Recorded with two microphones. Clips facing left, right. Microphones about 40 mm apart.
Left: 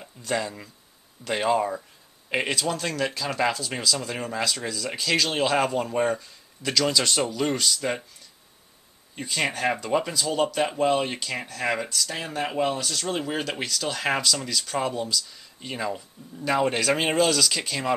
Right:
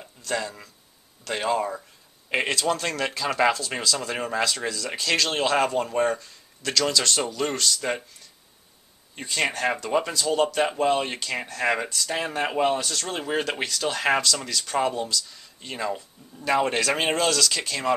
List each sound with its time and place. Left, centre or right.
0.2 s speech: centre
9.1 s speech: centre
12.8 s speech: centre